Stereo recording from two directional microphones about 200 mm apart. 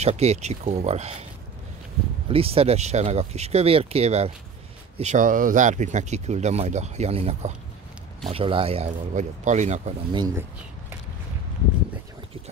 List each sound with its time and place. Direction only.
0.0 s speech: 35° right (ahead or behind)
2.2 s speech: 30° right (ahead or behind)
10.1 s speech: 20° right (ahead or behind)